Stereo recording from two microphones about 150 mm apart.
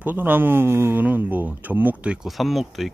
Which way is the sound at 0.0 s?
15° right (ahead or behind).